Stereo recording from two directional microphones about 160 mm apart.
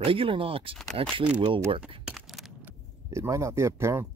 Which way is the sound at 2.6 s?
20° right (ahead or behind).